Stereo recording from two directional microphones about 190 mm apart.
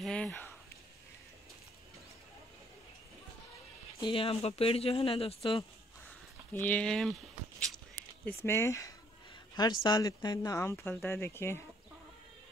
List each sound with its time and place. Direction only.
0.0 s speech: 5° left (ahead or behind)
4.0 s speech: 30° left (ahead or behind)
6.5 s speech: 10° left (ahead or behind)
8.4 s speech: 15° left (ahead or behind)